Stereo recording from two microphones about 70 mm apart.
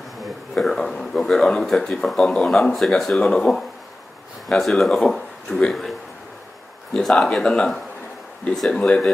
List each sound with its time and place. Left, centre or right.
0.2 s speech: centre